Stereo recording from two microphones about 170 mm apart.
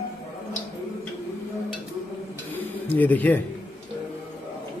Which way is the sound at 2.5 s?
10° left (ahead or behind).